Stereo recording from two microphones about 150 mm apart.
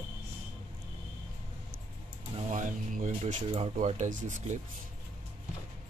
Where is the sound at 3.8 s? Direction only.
55° right (ahead or behind).